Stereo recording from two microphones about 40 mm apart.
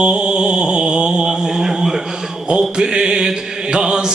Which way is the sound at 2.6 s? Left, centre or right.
Centre.